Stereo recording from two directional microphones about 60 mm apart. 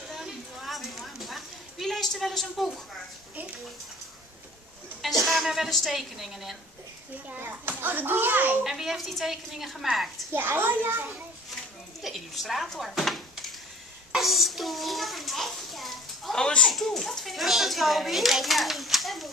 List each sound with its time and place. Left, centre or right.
0.1 s a sound: centre
5.0 s a child's voice: centre
7.2 s a child's voice: right
8.6 s a child's voice: centre
10.3 s a child's voice: right
12.0 s a child's voice: centre
14.1 s a sound: centre
16.3 s a child's voice: centre